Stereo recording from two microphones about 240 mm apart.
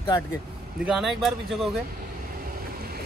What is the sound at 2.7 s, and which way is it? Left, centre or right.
Vehicle, right.